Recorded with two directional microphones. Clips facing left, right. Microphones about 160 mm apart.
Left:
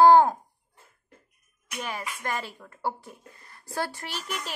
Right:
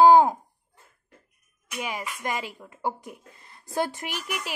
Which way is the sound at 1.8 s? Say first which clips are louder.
Right 2 dB; 15° right (ahead or behind).